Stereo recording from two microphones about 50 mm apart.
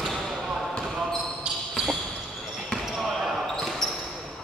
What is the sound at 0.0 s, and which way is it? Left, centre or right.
Basketball bounce, centre.